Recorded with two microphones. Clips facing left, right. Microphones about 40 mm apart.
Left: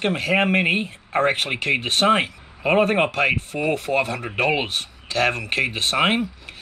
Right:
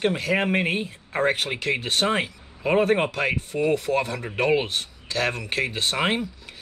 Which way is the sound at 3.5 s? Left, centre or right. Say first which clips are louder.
Left 1 dB; left.